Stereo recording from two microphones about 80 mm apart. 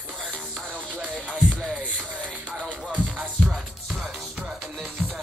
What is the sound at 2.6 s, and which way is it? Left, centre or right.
Music, centre.